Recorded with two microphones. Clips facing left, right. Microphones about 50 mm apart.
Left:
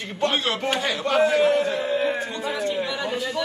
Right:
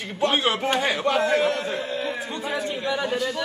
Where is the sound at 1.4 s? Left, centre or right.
Centre.